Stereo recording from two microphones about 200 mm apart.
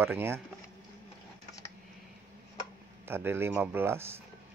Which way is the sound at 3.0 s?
10° right (ahead or behind).